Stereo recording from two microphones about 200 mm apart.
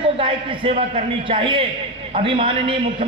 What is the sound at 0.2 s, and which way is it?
A man's voice, 30° right (ahead or behind).